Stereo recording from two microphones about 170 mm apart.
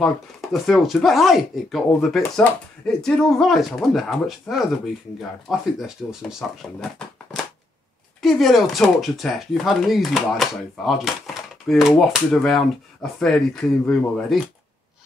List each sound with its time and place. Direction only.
0.0 s speech: centre (ahead or behind)
8.2 s speech: centre (ahead or behind)